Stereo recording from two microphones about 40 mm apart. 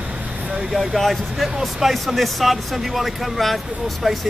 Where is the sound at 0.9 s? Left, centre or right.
Centre.